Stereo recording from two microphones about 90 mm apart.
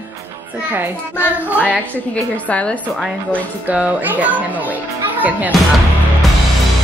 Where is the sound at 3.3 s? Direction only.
15° right (ahead or behind).